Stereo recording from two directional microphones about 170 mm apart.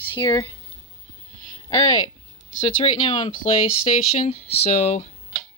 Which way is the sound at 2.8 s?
30° left (ahead or behind).